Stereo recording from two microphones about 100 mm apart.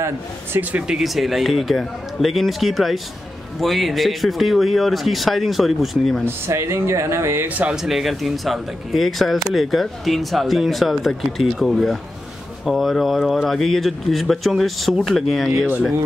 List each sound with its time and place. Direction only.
0.0 s speech: 20° right (ahead or behind); by 6.2 s centre (ahead or behind)
6.2 s speech: 30° right (ahead or behind)
7.7 s speech: 5° right (ahead or behind)